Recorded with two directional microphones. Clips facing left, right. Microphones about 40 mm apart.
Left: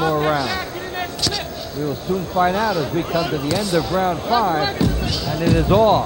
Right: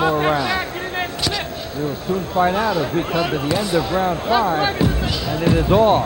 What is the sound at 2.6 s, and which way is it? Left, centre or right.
Speech, right.